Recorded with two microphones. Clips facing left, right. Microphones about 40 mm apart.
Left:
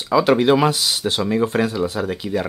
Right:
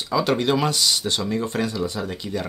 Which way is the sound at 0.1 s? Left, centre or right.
Centre.